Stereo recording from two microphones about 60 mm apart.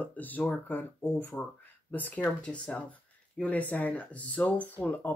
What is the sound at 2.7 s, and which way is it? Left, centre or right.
Speech, centre.